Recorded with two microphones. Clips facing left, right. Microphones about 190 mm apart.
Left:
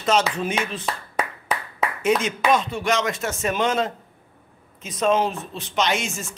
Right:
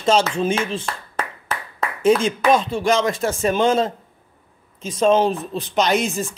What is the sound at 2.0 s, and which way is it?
Speech, 30° right (ahead or behind).